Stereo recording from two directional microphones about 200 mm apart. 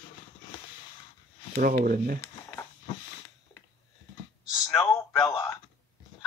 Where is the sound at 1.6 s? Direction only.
45° right (ahead or behind).